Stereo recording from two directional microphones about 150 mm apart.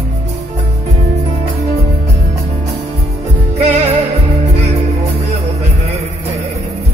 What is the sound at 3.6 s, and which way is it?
Music, 40° right (ahead or behind).